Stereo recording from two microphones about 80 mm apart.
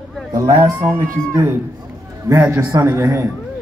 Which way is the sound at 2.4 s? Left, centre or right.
Right.